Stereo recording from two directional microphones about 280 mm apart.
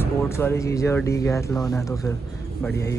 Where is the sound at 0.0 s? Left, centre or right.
Centre.